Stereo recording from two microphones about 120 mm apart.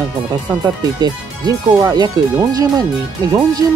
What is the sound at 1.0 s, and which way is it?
Speech, 30° right (ahead or behind).